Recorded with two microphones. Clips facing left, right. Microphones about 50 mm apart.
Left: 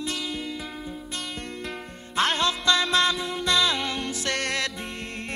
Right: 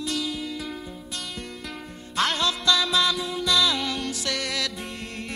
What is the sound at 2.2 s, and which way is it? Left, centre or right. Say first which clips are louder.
Music: left 1 dB; left.